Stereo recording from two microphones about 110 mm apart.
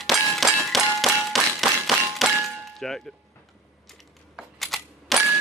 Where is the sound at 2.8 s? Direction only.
5° left (ahead or behind).